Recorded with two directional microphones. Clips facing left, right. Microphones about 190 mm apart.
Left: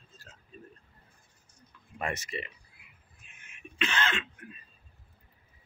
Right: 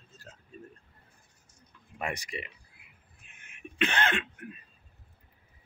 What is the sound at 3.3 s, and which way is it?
Throat clearing, 60° right (ahead or behind).